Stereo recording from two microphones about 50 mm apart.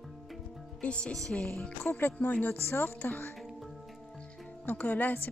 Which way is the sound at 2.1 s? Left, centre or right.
Left.